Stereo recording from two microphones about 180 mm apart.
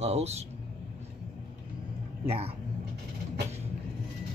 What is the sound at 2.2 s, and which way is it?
Speech, 35° right (ahead or behind).